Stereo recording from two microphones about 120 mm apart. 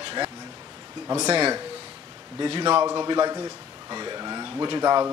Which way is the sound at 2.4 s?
40° right (ahead or behind).